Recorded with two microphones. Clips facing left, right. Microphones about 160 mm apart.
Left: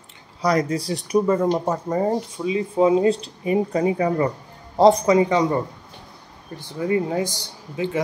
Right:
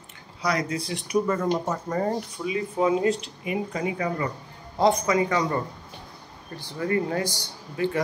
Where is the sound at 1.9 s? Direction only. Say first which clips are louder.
Left 4 dB; 20° left (ahead or behind).